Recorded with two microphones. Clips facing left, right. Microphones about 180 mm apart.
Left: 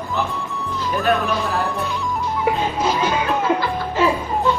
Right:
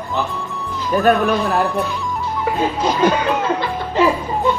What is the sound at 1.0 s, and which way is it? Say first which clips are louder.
Speech: right 5 dB; centre (ahead or behind).